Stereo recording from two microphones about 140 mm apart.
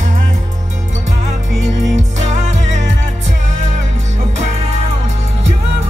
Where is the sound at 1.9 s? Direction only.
55° right (ahead or behind).